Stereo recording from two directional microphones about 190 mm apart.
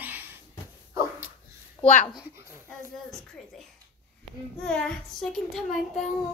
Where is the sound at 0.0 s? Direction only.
10° right (ahead or behind).